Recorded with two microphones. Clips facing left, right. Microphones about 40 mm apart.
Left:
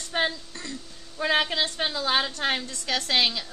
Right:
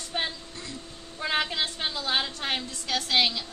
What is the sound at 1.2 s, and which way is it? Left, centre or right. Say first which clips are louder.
A woman's voice: left 4 dB; left.